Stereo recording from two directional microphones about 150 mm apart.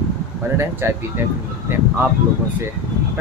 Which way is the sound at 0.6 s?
15° right (ahead or behind).